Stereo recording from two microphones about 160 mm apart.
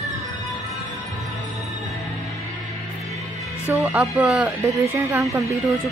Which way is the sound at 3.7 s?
10° right (ahead or behind).